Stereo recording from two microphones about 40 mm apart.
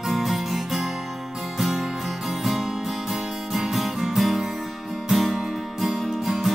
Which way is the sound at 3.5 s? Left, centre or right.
Centre.